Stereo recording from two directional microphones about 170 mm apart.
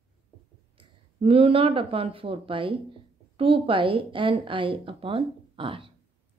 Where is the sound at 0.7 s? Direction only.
35° right (ahead or behind).